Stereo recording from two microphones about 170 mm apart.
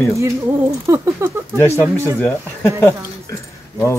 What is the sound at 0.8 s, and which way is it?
A woman's voice, 15° right (ahead or behind).